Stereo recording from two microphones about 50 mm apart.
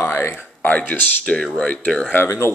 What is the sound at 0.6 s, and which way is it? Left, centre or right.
Speech, left.